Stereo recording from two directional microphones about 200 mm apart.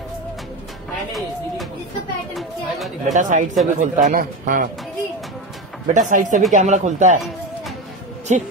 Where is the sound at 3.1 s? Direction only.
40° right (ahead or behind).